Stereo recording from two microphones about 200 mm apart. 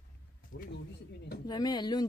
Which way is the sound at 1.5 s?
20° left (ahead or behind).